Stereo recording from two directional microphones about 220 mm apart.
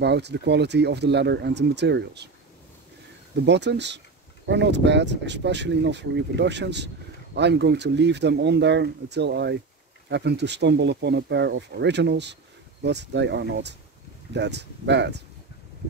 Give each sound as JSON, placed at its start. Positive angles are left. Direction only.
{"t": 0.0, "sound": "speech", "side_deg": -50}
{"t": 3.4, "sound": "speech", "side_deg": -50}